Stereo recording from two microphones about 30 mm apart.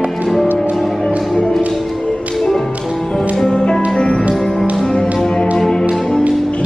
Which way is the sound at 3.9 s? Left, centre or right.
Left.